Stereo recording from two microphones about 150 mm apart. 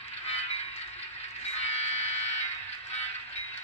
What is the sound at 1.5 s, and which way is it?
Fire alarm, 45° left (ahead or behind).